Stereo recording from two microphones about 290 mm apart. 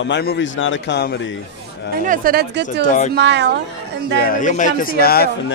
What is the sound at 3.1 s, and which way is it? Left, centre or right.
Speech, right.